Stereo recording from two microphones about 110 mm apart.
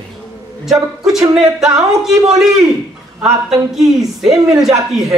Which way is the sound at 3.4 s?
5° right (ahead or behind).